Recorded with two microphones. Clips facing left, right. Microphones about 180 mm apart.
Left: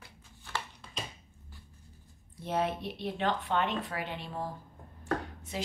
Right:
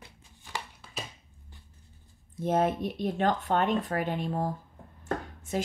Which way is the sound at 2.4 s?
45° right (ahead or behind).